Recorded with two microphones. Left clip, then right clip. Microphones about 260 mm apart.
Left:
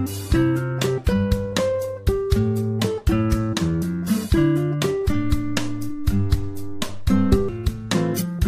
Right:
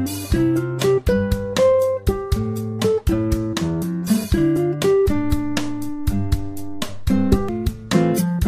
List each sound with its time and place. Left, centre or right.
0.3 s music: centre
6.8 s music: centre